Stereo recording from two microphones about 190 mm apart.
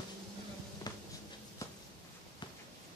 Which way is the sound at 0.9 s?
20° left (ahead or behind).